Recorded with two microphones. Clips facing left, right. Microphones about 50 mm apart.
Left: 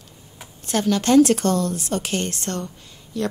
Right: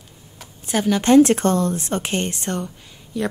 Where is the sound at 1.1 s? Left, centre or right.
Right.